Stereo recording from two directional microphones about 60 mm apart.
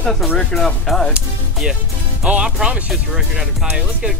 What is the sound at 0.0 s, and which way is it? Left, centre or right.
Speech, centre.